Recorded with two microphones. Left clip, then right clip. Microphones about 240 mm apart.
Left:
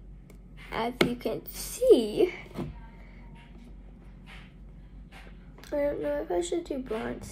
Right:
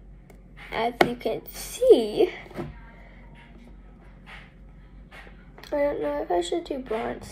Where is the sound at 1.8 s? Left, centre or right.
Left.